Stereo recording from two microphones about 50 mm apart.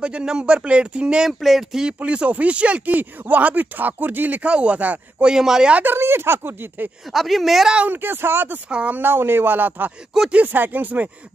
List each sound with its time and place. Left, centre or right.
0.0 s speech: centre
1.2 s speech: centre
2.0 s speech: right
4.4 s speech: right
5.2 s speech: centre
5.9 s speech: right
7.1 s a woman's voice: centre
7.9 s speech: right
8.6 s speech: right
8.9 s speech: right
10.1 s speech: centre
10.5 s speech: right